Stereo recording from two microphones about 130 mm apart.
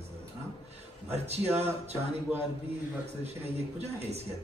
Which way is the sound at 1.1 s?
55° right (ahead or behind).